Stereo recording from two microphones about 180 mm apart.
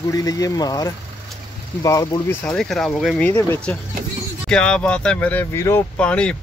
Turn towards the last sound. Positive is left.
turn(degrees=5)  # may be behind; listen again after turning